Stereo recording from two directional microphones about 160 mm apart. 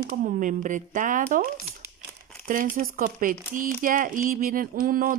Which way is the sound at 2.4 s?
60° right (ahead or behind).